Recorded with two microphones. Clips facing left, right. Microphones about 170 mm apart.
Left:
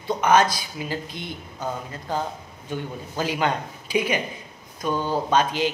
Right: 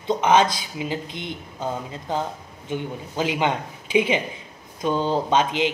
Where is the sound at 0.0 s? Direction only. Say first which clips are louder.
Right 1 dB; 20° right (ahead or behind).